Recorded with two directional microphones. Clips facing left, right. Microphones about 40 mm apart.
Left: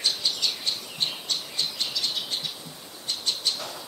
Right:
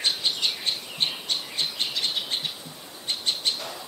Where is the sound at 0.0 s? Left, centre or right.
Right.